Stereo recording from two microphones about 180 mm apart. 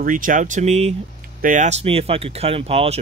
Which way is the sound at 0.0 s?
50° right (ahead or behind).